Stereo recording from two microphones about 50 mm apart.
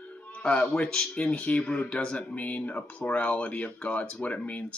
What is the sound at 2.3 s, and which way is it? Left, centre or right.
Speech, left.